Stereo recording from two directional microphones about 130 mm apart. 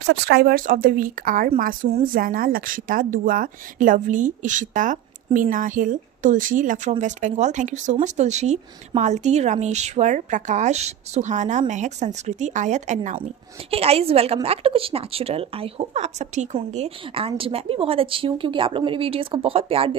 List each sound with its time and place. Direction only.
0.6 s a woman's voice: 90° right
7.0 s speech: 70° right (ahead or behind)
13.7 s a woman's voice: 50° right (ahead or behind)